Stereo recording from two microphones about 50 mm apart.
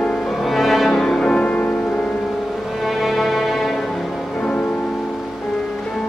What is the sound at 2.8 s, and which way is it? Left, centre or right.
Music, centre.